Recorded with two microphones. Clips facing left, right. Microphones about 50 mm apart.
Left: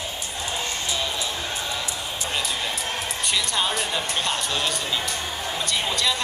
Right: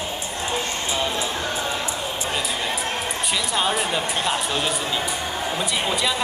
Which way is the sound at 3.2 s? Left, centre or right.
Centre.